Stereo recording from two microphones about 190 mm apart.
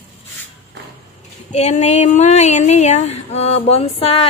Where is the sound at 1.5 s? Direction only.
35° left (ahead or behind).